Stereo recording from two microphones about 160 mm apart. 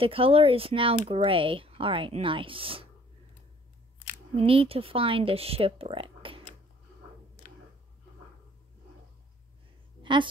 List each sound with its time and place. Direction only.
0.0 s speech: 35° right (ahead or behind)
4.4 s speech: 35° right (ahead or behind)